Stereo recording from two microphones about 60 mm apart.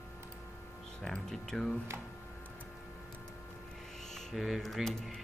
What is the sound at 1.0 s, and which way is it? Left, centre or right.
Speech, centre.